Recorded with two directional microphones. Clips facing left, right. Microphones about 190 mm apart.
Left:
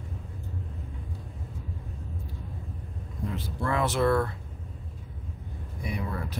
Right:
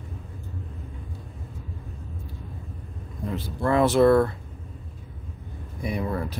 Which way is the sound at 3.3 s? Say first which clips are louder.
Right 7 dB; 35° right (ahead or behind).